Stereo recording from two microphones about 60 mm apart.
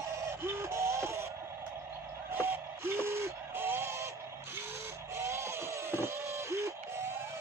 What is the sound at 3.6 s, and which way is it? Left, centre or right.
Music, right.